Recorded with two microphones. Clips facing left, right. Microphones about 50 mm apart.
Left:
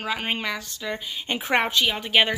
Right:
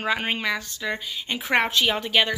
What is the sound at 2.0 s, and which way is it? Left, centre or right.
Speech, centre.